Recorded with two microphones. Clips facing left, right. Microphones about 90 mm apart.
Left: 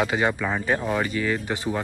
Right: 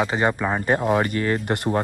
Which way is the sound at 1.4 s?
65° right (ahead or behind).